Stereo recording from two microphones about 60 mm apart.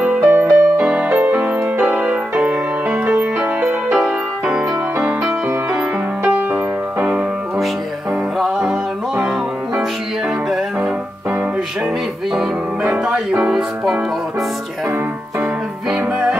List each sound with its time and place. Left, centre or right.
0.0 s music: centre
1.0 s music: right
6.2 s music: right
8.5 s music: centre
13.5 s music: centre
15.9 s music: centre